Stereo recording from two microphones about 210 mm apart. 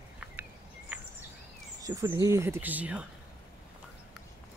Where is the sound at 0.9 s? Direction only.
5° right (ahead or behind).